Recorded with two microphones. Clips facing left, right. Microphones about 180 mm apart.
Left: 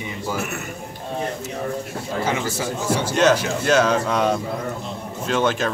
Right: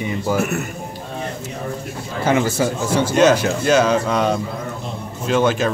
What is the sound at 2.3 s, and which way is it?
Speech, 55° right (ahead or behind).